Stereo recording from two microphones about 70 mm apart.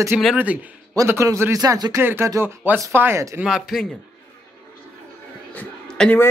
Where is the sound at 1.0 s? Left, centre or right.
Right.